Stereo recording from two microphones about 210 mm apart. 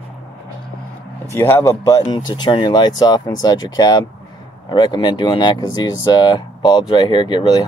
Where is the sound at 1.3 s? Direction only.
15° left (ahead or behind).